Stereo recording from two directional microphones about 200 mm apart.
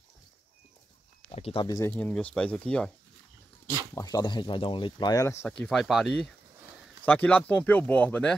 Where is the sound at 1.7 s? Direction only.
10° left (ahead or behind).